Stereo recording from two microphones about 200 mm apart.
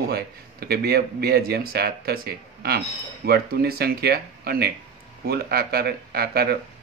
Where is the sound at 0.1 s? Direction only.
50° right (ahead or behind).